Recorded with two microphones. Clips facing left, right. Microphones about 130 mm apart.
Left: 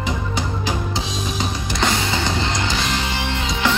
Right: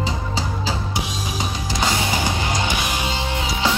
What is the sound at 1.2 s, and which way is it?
Music, 5° right (ahead or behind).